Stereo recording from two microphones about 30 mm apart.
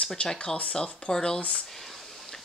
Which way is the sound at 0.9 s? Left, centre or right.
Left.